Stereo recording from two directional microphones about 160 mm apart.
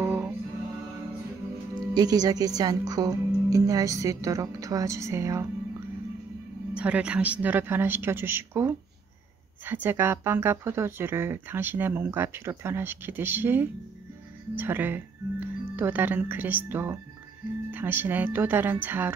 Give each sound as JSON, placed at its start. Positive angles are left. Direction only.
{"t": 0.0, "sound": "music", "side_deg": -10}
{"t": 2.0, "sound": "speech", "side_deg": -25}
{"t": 6.7, "sound": "speech", "side_deg": -5}